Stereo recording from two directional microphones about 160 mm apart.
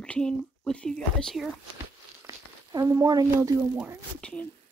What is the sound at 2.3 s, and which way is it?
Speech, 20° right (ahead or behind).